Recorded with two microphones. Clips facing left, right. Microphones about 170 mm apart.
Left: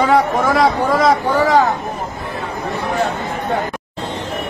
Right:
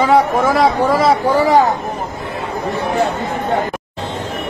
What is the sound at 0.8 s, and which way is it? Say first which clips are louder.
Speech: right 1 dB; 30° right (ahead or behind).